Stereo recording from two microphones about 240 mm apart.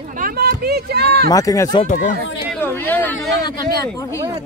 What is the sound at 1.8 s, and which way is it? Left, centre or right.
Speech, left.